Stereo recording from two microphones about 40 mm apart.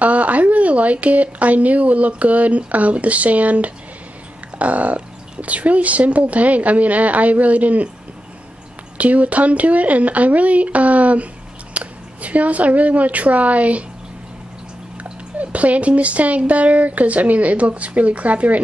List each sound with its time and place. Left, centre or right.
0.0 s a sound: right
1.0 s speech: right
8.9 s a woman's voice: right
15.3 s speech: right